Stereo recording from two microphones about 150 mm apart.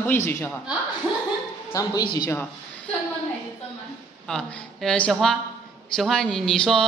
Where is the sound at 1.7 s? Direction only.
20° left (ahead or behind).